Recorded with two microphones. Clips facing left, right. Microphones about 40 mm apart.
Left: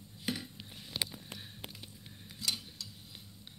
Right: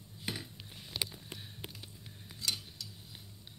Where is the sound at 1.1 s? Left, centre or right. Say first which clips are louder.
Left 1 dB; centre.